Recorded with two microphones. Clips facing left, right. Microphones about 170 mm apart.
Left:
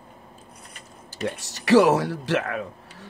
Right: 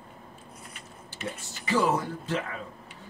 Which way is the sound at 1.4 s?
80° left.